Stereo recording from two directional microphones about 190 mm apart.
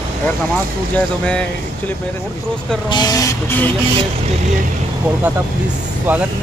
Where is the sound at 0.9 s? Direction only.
5° left (ahead or behind).